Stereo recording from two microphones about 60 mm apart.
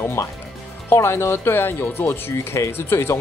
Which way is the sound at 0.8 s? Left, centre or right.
Left.